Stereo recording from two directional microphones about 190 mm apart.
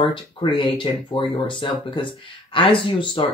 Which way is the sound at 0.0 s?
25° left (ahead or behind).